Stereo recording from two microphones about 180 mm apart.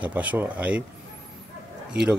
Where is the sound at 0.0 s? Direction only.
10° right (ahead or behind).